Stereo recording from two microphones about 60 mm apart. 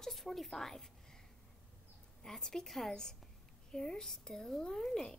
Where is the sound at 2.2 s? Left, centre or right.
Centre.